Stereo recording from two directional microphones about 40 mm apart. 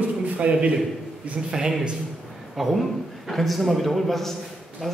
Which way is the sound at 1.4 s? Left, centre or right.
Centre.